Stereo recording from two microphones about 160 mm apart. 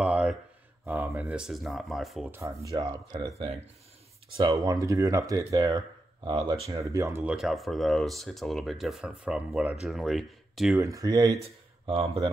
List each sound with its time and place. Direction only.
0.0 s a sound: 5° right (ahead or behind)
0.8 s speech: 15° right (ahead or behind)
2.7 s speech: 25° right (ahead or behind)
4.4 s speech: 25° right (ahead or behind)
7.3 s speech: centre (ahead or behind)
10.8 s speech: 20° right (ahead or behind)
11.8 s speech: 35° right (ahead or behind)